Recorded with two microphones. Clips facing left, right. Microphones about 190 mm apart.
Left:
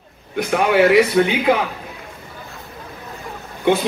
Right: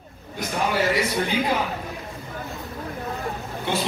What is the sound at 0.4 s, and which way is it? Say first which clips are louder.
Speech: left 9 dB; 65° left (ahead or behind).